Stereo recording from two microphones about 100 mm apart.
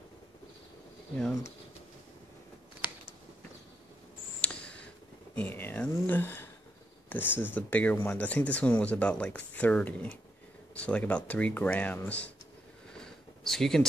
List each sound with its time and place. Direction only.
4.4 s mouse: 10° left (ahead or behind)
5.3 s speech: 20° left (ahead or behind)
12.9 s a sound: 5° left (ahead or behind)